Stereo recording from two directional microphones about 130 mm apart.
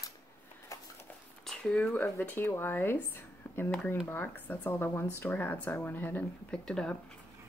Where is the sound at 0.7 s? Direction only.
25° left (ahead or behind).